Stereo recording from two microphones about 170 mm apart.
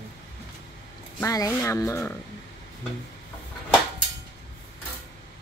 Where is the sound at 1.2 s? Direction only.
20° left (ahead or behind).